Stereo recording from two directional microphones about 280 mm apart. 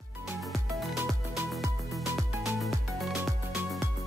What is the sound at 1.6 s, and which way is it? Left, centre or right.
Music, centre.